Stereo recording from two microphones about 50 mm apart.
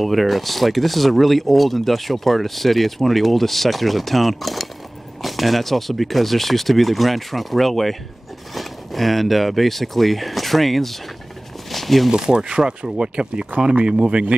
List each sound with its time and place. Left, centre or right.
0.0 s speech: centre
11.7 s a sound: centre
12.1 s speech: centre
14.0 s a man's voice: right